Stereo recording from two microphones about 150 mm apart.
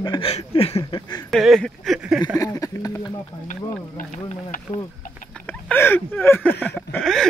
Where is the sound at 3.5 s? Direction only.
60° left (ahead or behind).